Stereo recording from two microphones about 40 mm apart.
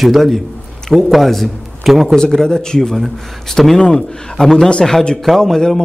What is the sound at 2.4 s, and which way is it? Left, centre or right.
A man's voice, centre.